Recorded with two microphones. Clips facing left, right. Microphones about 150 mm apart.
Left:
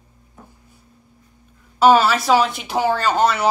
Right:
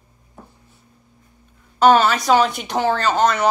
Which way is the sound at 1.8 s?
5° left (ahead or behind).